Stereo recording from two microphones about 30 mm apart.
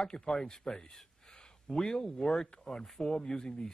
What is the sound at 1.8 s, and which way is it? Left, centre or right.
Speech, centre.